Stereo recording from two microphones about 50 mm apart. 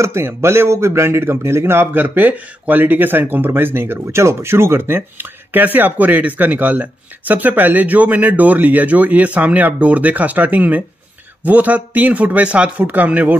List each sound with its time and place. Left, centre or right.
0.0 s speech: right
2.0 s speech: right
4.2 s speech: right
12.8 s speech: right